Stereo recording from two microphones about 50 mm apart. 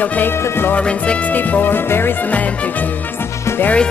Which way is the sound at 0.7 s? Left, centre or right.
Left.